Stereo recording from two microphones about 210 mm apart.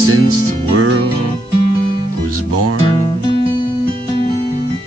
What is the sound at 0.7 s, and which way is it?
Music, 70° right (ahead or behind).